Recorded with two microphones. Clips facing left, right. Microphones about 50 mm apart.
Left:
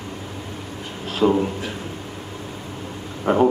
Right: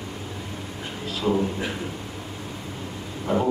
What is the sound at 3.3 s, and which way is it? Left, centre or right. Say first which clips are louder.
Speech: left 6 dB; left.